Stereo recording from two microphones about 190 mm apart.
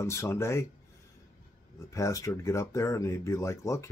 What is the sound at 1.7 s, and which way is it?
Speech, 15° left (ahead or behind).